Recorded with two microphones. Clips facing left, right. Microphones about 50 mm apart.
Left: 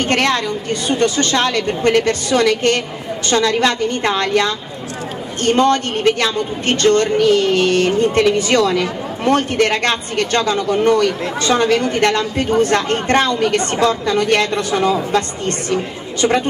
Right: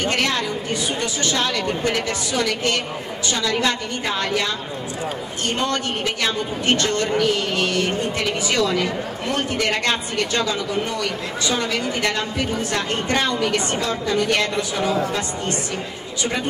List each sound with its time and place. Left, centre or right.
0.0 s a woman's voice: left